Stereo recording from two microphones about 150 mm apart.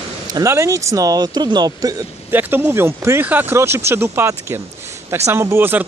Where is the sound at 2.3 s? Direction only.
15° right (ahead or behind).